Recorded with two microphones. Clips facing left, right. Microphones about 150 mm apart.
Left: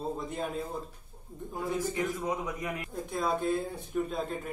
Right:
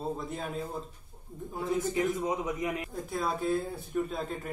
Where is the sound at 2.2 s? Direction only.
20° right (ahead or behind).